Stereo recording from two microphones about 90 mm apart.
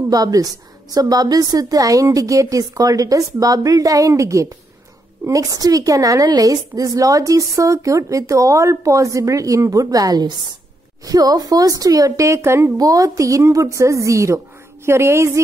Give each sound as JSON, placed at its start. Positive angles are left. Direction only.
{"t": 0.1, "sound": "a woman's voice", "side_deg": -40}
{"t": 12.7, "sound": "a woman's voice", "side_deg": -40}